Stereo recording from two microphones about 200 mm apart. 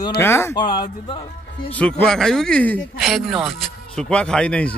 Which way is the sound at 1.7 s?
5° left (ahead or behind).